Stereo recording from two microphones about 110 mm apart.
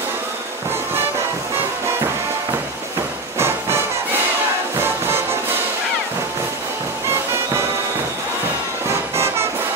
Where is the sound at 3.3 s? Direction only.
20° right (ahead or behind).